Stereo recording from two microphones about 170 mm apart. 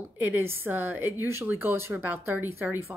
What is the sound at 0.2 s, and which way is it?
A woman's voice, 10° right (ahead or behind).